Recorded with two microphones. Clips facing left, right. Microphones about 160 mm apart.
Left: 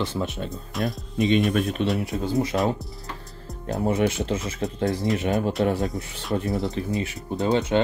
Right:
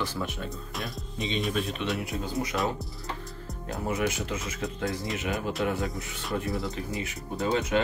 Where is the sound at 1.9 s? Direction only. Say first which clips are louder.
Left 7 dB; 25° left (ahead or behind).